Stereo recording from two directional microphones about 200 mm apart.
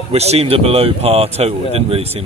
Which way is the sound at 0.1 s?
30° right (ahead or behind).